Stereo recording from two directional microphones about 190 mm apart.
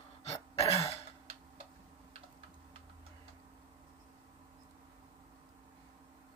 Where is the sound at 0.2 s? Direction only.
35° left (ahead or behind).